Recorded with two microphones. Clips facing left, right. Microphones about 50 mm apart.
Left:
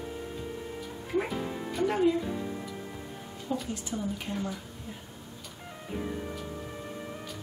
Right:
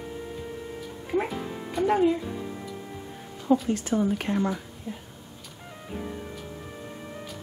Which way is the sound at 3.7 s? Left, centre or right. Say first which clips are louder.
Right 9 dB; right.